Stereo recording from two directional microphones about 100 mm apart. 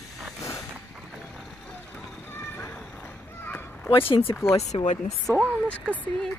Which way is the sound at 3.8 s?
60° left (ahead or behind).